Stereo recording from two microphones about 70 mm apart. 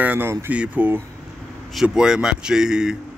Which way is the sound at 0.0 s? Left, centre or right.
Right.